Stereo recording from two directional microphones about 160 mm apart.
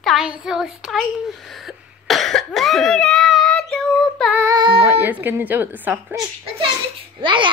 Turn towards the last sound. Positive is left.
turn(degrees=-30)  # may be behind; listen again after turning